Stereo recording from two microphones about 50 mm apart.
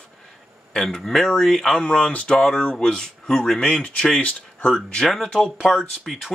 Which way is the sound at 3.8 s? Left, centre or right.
Left.